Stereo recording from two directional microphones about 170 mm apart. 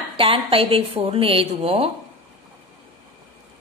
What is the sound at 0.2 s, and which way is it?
A woman's voice, 30° right (ahead or behind).